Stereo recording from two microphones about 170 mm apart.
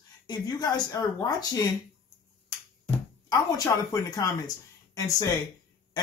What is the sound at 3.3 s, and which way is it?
Speech, 20° left (ahead or behind).